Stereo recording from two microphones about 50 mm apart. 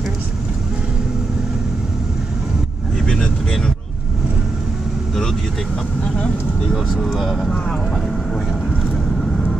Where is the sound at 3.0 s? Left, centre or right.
Centre.